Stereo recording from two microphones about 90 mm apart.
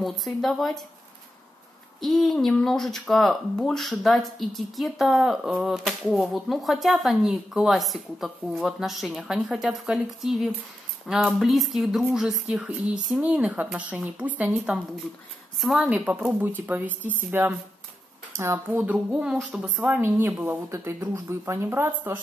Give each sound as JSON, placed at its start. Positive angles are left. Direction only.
{"t": 0.0, "sound": "speech", "side_deg": 0}
{"t": 2.0, "sound": "speech", "side_deg": 0}
{"t": 19.5, "sound": "speech", "side_deg": -15}
{"t": 21.0, "sound": "speech", "side_deg": -35}